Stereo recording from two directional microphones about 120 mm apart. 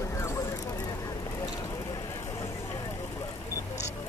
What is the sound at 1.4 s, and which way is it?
Vehicle, 35° left (ahead or behind).